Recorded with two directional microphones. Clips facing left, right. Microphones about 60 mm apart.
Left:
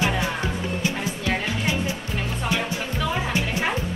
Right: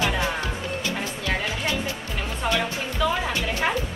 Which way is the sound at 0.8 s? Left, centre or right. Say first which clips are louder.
Left 2 dB; centre.